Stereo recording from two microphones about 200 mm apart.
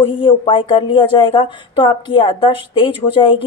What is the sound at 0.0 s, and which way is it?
Speech, 25° left (ahead or behind).